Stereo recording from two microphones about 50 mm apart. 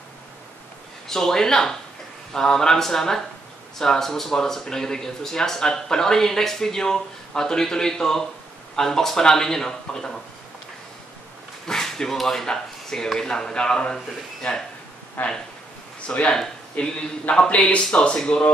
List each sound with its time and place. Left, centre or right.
1.0 s speech: centre
11.6 s speech: centre
15.2 s speech: left
16.1 s speech: left